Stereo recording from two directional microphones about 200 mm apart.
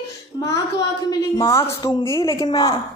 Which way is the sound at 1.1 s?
15° left (ahead or behind).